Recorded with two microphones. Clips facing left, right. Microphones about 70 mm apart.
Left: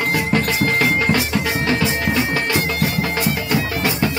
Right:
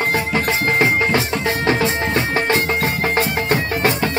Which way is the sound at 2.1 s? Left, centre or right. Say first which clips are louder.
Right 2 dB; right.